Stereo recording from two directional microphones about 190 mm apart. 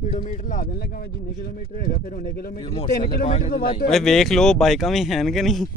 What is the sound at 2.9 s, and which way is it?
Speech, 50° left (ahead or behind).